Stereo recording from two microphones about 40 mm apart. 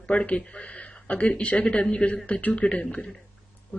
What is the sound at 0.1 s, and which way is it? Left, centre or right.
A man's voice, left.